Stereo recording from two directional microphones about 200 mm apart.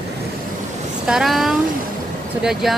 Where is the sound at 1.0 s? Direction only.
Centre (ahead or behind).